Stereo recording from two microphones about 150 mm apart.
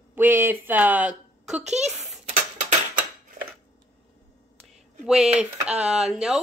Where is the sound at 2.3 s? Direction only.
60° right (ahead or behind).